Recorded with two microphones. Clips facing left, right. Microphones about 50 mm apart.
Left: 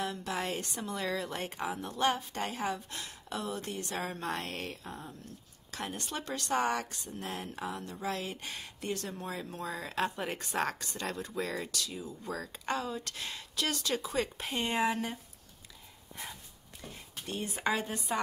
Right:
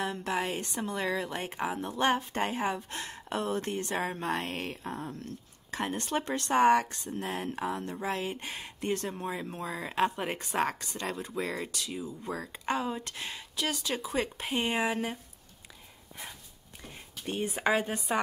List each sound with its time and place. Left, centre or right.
0.0 s speech: right
0.3 s speech: centre
0.6 s speech: right
3.9 s speech: right
4.8 s speech: right
9.3 s speech: right
10.6 s speech: centre
17.3 s speech: right